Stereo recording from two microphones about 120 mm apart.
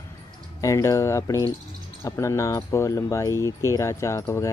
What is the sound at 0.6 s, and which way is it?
Speech, 25° left (ahead or behind).